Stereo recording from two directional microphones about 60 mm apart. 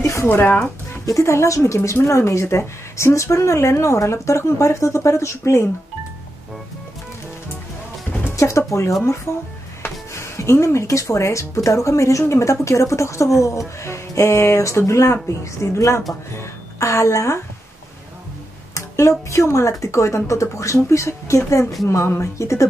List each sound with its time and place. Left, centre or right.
0.0 s music: left
0.3 s speech: left
1.0 s a woman's voice: left
8.4 s a woman's voice: left
18.8 s a woman's voice: left
21.8 s speech: left